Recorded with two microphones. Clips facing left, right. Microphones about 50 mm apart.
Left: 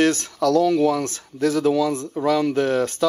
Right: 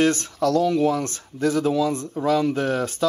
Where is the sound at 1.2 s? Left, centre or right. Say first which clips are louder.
Left 1 dB; right.